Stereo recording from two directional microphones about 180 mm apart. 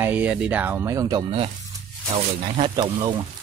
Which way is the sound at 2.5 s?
25° right (ahead or behind).